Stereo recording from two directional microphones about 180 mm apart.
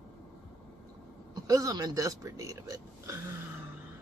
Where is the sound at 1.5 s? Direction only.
20° right (ahead or behind).